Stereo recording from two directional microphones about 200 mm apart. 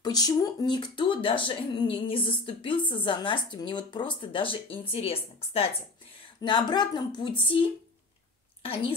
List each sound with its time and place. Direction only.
0.0 s speech: 20° left (ahead or behind)
8.6 s speech: 30° left (ahead or behind)